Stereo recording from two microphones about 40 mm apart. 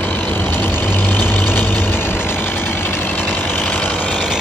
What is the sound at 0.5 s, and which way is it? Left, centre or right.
Vehicle, left.